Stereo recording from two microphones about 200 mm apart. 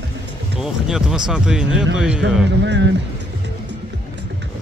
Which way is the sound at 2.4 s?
60° right (ahead or behind).